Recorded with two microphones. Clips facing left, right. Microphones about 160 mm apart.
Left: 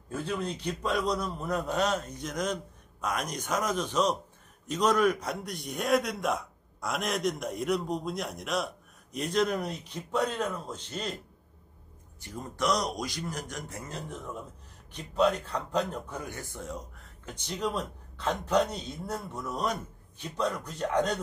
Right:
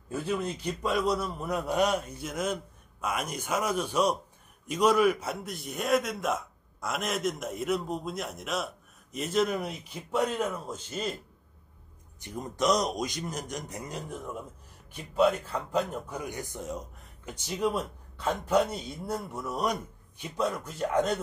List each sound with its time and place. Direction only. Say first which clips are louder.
0.1 s a man's voice: right 2 dB; 10° right (ahead or behind)
12.2 s a man's voice: right 2 dB; 20° right (ahead or behind)